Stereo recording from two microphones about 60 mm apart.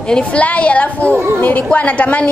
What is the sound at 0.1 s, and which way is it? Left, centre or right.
A woman's voice, left.